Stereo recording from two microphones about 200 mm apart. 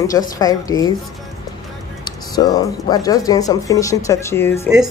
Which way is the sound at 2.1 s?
20° left (ahead or behind).